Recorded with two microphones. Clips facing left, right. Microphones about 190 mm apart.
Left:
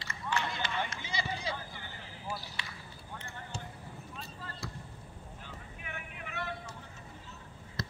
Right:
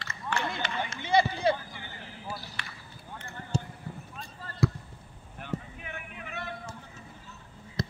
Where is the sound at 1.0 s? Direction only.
60° right (ahead or behind).